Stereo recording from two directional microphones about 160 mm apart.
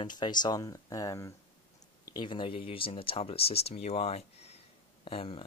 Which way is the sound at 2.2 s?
30° left (ahead or behind).